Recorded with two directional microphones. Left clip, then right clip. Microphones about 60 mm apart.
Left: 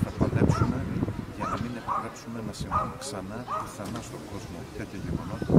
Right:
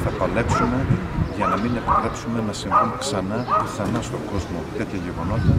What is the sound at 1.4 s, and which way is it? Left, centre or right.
Speech, left.